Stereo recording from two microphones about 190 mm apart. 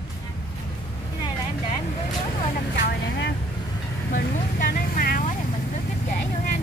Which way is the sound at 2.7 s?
50° left (ahead or behind).